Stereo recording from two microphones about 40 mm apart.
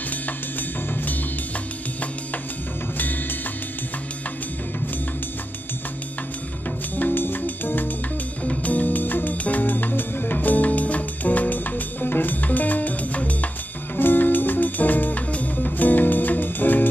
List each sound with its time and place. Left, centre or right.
7.0 s music: left
13.9 s music: left